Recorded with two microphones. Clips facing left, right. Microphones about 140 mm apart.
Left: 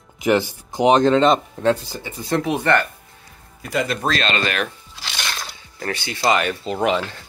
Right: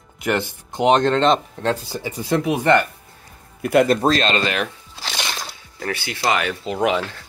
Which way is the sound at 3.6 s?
60° right (ahead or behind).